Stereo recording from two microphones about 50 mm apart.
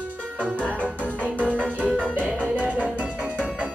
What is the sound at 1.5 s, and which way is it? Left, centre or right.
Music, right.